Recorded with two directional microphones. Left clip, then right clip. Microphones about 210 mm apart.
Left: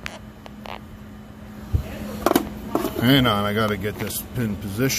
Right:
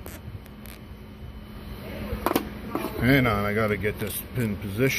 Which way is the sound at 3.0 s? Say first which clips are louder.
Left 3 dB; 20° left (ahead or behind).